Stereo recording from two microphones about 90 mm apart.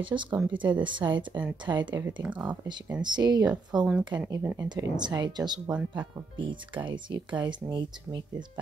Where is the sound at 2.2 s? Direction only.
15° right (ahead or behind).